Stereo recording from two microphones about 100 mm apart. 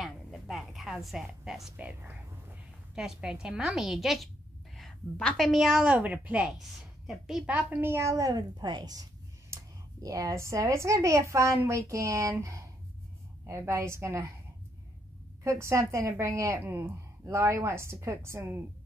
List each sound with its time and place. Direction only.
0.0 s a sound: centre (ahead or behind)
1.8 s a woman's voice: 15° right (ahead or behind)
2.9 s a woman's voice: 5° right (ahead or behind)
5.1 s a woman's voice: 10° left (ahead or behind)
5.5 s a woman's voice: 5° right (ahead or behind)
7.4 s a woman's voice: 15° right (ahead or behind); by 9.0 s 40° right (ahead or behind)
10.0 s a woman's voice: 35° right (ahead or behind)
15.4 s a woman's voice: 30° right (ahead or behind)